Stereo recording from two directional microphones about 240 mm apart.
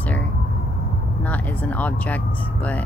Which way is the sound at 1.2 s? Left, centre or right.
Centre.